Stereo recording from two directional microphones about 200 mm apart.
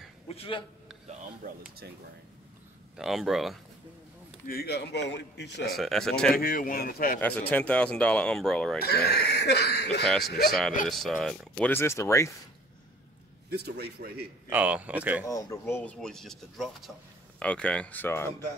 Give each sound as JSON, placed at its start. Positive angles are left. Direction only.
{"t": 0.3, "sound": "a man's voice", "side_deg": 25}
{"t": 3.0, "sound": "speech", "side_deg": 0}
{"t": 4.5, "sound": "speech", "side_deg": 50}
{"t": 5.8, "sound": "speech", "side_deg": 0}
{"t": 6.3, "sound": "speech", "side_deg": 45}
{"t": 7.2, "sound": "speech", "side_deg": 10}
{"t": 8.7, "sound": "speech", "side_deg": 50}
{"t": 10.0, "sound": "speech", "side_deg": 0}
{"t": 13.5, "sound": "a man's voice", "side_deg": -55}
{"t": 14.5, "sound": "speech", "side_deg": -5}
{"t": 15.2, "sound": "speech", "side_deg": 15}